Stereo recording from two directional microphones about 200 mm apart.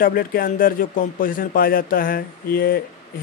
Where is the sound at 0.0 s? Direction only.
45° left (ahead or behind).